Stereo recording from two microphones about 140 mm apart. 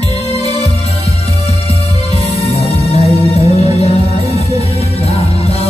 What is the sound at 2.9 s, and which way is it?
Music, 50° left (ahead or behind).